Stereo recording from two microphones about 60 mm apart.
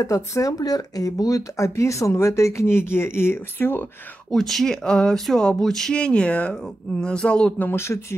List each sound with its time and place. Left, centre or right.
0.0 s speech: left
4.3 s speech: centre
5.9 s speech: centre
7.6 s speech: left